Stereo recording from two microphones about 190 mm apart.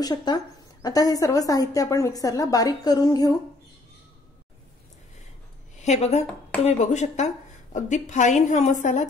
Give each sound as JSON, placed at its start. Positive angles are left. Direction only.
{"t": 0.0, "sound": "a woman's voice", "side_deg": 20}
{"t": 5.8, "sound": "a woman's voice", "side_deg": 35}